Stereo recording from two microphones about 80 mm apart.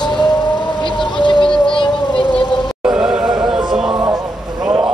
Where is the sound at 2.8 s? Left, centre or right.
Centre.